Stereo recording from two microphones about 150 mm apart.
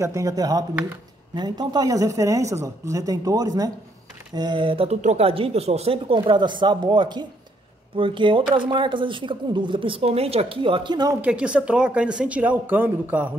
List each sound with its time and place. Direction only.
0.0 s speech: 20° right (ahead or behind)
11.1 s speech: 10° right (ahead or behind)